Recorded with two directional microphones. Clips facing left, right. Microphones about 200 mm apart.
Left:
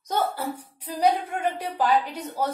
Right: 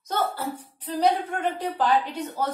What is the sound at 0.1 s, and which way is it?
A woman's voice, 10° left (ahead or behind).